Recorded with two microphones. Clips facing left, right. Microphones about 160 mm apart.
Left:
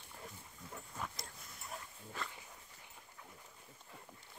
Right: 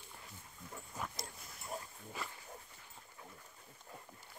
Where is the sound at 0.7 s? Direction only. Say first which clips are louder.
Right 1 dB; 5° right (ahead or behind).